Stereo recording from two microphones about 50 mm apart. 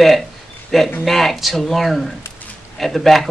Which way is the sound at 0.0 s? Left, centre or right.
Centre.